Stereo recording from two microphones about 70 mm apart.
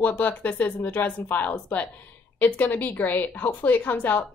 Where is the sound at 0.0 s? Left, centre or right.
Left.